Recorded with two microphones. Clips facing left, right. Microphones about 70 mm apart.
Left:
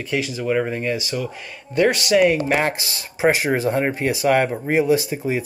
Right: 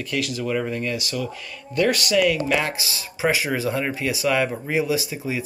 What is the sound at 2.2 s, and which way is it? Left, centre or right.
Speech, left.